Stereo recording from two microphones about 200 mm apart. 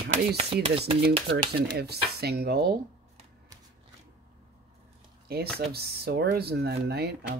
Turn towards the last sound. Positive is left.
turn(degrees=-55)  # may be behind; listen again after turning